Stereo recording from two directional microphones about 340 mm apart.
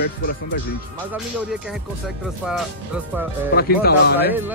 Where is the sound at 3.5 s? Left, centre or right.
Left.